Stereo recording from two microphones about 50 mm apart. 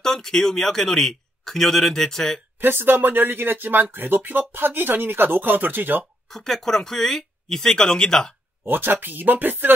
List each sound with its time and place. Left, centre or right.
0.0 s speech: centre
2.6 s speech: right
6.2 s speech: centre
8.6 s speech: right